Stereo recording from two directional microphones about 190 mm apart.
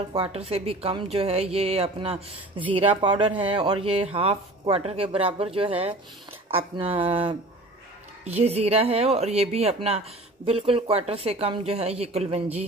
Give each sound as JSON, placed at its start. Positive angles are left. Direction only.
{"t": 0.1, "sound": "speech", "side_deg": -30}